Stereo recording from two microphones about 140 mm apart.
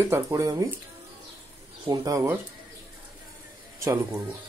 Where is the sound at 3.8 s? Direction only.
20° right (ahead or behind).